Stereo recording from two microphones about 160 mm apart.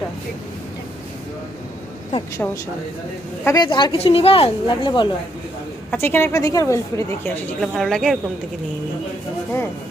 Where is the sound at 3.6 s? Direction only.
25° left (ahead or behind).